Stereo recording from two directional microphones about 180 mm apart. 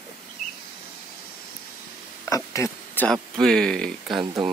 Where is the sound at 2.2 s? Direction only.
20° left (ahead or behind).